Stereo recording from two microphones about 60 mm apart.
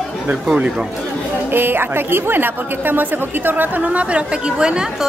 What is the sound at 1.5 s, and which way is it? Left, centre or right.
A woman's voice, right.